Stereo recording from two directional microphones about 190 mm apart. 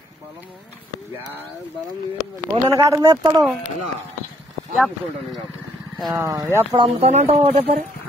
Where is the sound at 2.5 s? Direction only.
15° right (ahead or behind).